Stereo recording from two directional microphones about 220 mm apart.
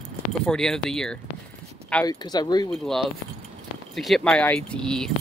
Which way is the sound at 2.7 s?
Centre (ahead or behind).